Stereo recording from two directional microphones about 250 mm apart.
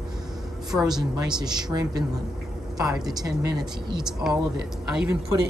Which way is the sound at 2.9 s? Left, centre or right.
Centre.